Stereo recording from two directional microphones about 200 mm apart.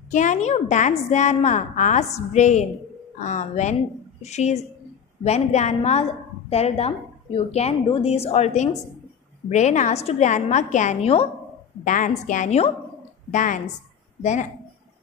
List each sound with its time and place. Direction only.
0.1 s a woman's voice: 35° left (ahead or behind)